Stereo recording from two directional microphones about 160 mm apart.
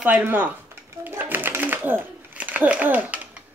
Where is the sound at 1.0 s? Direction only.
10° right (ahead or behind).